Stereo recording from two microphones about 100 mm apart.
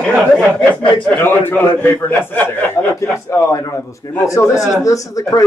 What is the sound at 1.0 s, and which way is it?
A man's voice, 20° left (ahead or behind).